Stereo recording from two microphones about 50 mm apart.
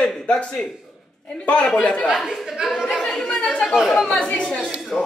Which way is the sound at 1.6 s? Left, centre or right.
Centre.